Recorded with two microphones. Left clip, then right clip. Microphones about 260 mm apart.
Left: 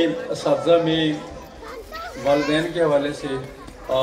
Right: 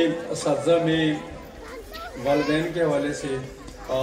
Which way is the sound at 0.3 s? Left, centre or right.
Centre.